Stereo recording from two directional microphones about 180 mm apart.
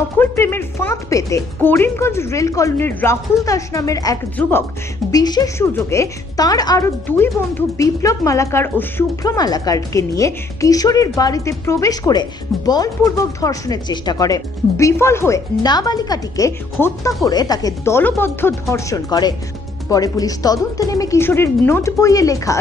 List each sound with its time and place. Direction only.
0.2 s speech: 15° left (ahead or behind)
17.2 s speech: 20° left (ahead or behind)